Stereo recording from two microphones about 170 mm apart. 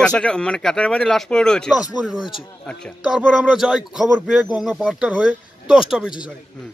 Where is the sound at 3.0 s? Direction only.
5° right (ahead or behind).